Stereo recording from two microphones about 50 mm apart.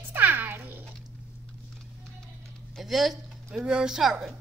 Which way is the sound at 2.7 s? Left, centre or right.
Centre.